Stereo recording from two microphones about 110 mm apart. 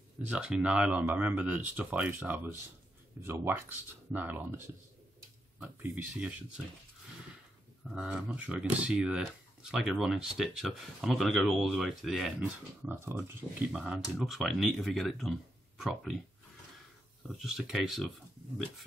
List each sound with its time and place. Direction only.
0.3 s speech: 5° right (ahead or behind)
5.6 s speech: 10° right (ahead or behind)
7.9 s speech: 5° right (ahead or behind)
12.8 s speech: 20° right (ahead or behind)
13.7 s speech: 5° right (ahead or behind)
17.4 s speech: 5° right (ahead or behind)